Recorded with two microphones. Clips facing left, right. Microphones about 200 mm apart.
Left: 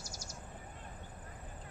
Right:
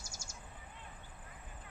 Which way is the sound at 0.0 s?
50° right (ahead or behind).